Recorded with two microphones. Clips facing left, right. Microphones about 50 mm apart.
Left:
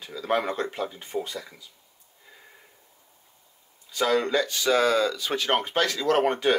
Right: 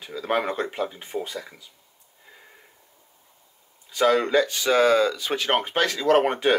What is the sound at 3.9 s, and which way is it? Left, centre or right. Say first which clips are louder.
Speech: right 4 dB; centre.